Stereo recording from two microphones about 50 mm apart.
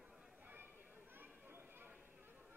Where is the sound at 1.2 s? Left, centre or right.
Right.